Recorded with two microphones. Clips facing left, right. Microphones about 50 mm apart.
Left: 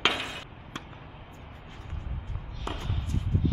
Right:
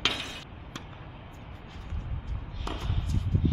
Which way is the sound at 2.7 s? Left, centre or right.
Left.